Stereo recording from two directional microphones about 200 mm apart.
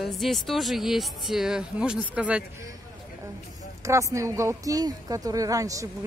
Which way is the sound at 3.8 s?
15° right (ahead or behind).